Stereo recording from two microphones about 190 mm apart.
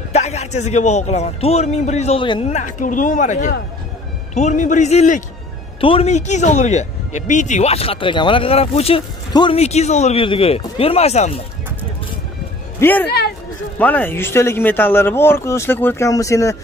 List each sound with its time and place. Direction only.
0.1 s speech: 35° left (ahead or behind)
2.5 s speech: 45° left (ahead or behind)
5.8 s speech: 30° left (ahead or behind)
12.8 s speech: 10° left (ahead or behind)